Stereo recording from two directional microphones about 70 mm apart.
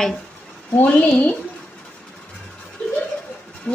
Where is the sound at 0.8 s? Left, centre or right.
Centre.